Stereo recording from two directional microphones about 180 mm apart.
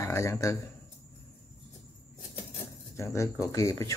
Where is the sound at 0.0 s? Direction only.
15° left (ahead or behind).